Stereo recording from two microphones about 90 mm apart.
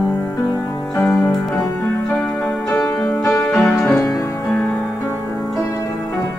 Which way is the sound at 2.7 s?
35° left (ahead or behind).